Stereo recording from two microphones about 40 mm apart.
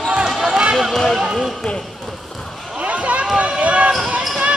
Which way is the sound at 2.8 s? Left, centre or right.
Right.